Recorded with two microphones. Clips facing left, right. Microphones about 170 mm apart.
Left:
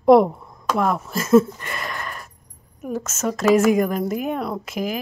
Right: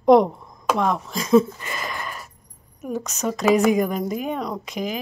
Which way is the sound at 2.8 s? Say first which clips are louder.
Left 1 dB; centre (ahead or behind).